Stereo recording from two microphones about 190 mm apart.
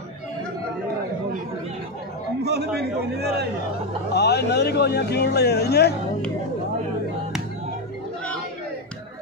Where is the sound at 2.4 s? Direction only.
60° right (ahead or behind).